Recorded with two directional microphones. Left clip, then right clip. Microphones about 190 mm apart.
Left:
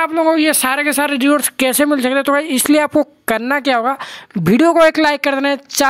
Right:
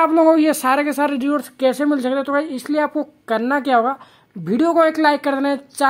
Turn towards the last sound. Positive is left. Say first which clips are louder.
# left 4 dB
turn(degrees=30)  # may be behind; listen again after turning